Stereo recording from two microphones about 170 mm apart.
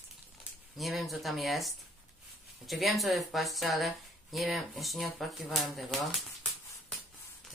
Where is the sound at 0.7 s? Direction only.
Centre (ahead or behind).